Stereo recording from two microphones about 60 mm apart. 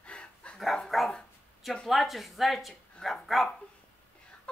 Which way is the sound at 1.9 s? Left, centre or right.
Centre.